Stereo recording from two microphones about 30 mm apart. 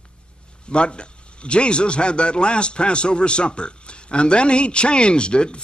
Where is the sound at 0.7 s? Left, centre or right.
Left.